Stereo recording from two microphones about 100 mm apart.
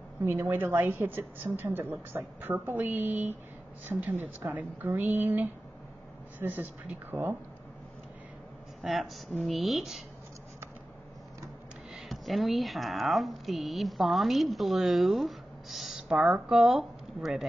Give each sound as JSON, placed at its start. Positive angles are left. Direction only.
{"t": 0.2, "sound": "a woman's voice", "side_deg": -20}
{"t": 8.8, "sound": "speech", "side_deg": 0}
{"t": 11.9, "sound": "speech", "side_deg": 0}